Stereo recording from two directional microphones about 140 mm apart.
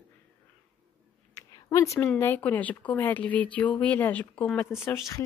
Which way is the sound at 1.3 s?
20° left (ahead or behind).